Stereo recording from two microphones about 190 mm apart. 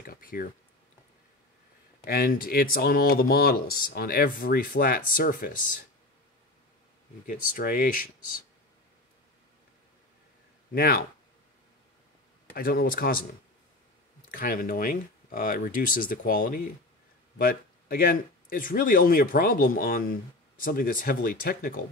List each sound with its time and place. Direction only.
0.0 s a sound: 50° left (ahead or behind)
2.0 s speech: 50° left (ahead or behind)
7.2 s speech: 45° left (ahead or behind)
10.7 s speech: 50° left (ahead or behind)
12.5 s speech: 50° left (ahead or behind)
14.2 s speech: 50° left (ahead or behind)